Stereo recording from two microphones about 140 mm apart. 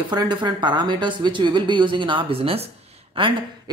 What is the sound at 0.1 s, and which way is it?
Speech, 30° right (ahead or behind).